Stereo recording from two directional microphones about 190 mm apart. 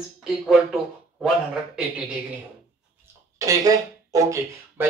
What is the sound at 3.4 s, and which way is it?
Speech, 15° right (ahead or behind).